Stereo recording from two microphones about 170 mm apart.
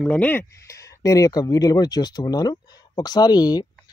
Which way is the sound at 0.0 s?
10° left (ahead or behind).